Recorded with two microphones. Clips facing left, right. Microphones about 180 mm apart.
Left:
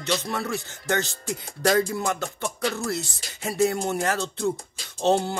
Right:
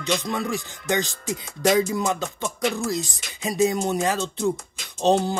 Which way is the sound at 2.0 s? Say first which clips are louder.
Right 2 dB; 15° right (ahead or behind).